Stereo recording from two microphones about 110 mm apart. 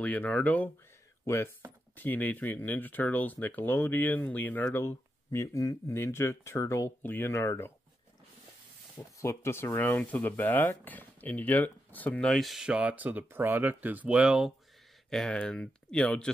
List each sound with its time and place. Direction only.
0.0 s speech: 10° left (ahead or behind)
8.9 s speech: 25° left (ahead or behind); by 14.5 s 10° right (ahead or behind)
15.0 s speech: 5° left (ahead or behind)